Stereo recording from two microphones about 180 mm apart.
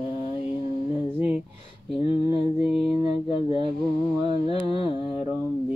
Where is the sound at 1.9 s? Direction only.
30° left (ahead or behind).